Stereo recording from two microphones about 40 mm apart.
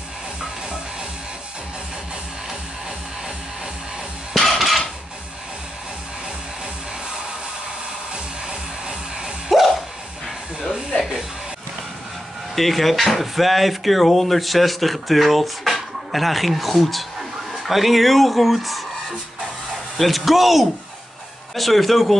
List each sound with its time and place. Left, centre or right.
4.3 s dishes: centre
8.5 s music: right
9.5 s a sound: centre
12.5 s speech: centre